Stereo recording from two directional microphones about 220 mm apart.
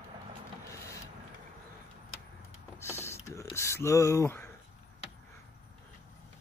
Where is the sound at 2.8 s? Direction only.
10° left (ahead or behind).